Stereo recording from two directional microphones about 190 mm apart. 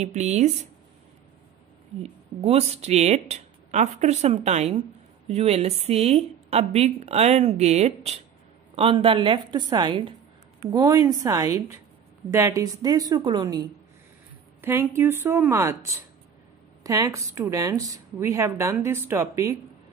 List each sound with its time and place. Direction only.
0.0 s speech: 35° right (ahead or behind)
2.0 s a woman's voice: 35° right (ahead or behind)
14.6 s a woman's voice: 10° right (ahead or behind)